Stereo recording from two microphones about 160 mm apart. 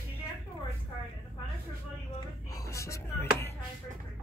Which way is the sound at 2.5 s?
20° left (ahead or behind).